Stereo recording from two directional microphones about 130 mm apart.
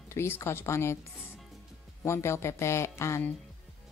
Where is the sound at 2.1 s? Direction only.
20° left (ahead or behind).